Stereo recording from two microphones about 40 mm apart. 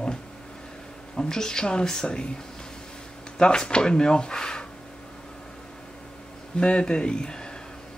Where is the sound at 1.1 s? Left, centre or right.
Centre.